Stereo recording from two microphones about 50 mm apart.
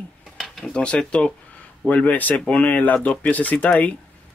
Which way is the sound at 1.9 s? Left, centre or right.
Left.